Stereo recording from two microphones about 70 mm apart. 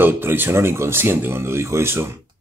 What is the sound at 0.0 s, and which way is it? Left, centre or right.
Speech, right.